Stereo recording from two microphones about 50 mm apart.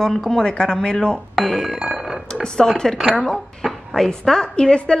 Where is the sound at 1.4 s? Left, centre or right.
Centre.